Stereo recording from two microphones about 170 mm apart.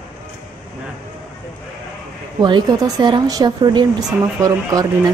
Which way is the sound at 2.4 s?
25° right (ahead or behind).